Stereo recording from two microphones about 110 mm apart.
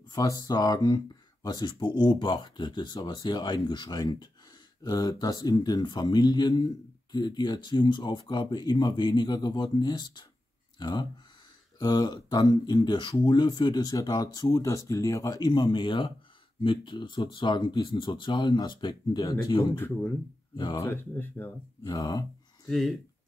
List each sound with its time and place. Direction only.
0.4 s speech: 35° left (ahead or behind)
20.7 s speech: 20° left (ahead or behind)
21.8 s speech: 35° left (ahead or behind)
22.7 s speech: centre (ahead or behind)